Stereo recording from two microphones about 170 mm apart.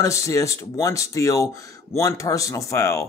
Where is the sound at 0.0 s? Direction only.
20° left (ahead or behind).